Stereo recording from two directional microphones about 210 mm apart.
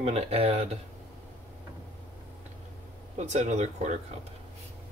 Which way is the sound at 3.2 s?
35° right (ahead or behind).